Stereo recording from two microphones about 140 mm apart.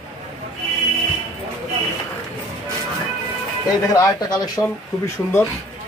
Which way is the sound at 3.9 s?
30° left (ahead or behind).